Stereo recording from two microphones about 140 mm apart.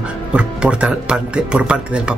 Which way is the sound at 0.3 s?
5° right (ahead or behind).